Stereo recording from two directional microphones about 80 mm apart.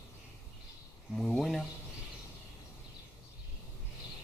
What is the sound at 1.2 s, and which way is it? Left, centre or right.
Speech, centre.